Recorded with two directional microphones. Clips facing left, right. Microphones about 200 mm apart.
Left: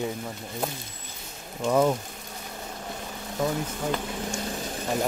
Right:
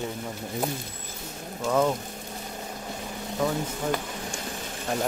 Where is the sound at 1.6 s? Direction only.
10° left (ahead or behind).